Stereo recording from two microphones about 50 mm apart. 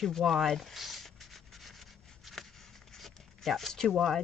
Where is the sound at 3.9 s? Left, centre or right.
Centre.